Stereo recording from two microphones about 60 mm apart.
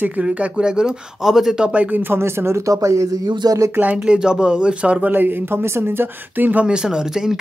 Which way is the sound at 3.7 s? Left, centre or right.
Right.